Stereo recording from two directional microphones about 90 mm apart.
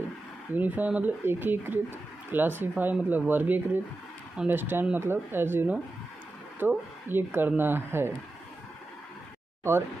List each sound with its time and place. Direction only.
0.5 s speech: 20° right (ahead or behind)
9.6 s speech: 30° right (ahead or behind)